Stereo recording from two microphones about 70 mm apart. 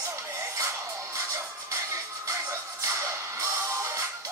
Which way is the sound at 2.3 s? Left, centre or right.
Right.